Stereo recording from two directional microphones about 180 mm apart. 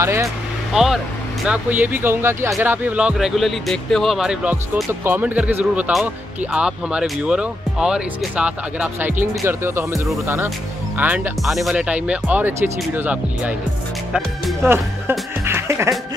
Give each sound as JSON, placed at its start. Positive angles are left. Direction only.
{"t": 0.0, "sound": "speech", "side_deg": -15}
{"t": 0.7, "sound": "speech", "side_deg": 0}
{"t": 14.6, "sound": "speech", "side_deg": -15}